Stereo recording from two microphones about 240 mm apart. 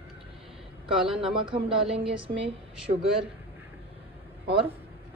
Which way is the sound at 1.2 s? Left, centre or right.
Right.